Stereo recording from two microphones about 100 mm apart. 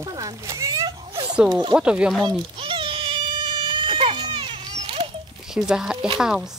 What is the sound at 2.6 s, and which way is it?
Baby cry, 60° right (ahead or behind).